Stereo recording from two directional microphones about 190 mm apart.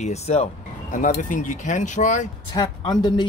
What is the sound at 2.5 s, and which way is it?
Speech, 20° left (ahead or behind).